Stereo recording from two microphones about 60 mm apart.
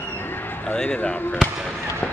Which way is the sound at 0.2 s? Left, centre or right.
Left.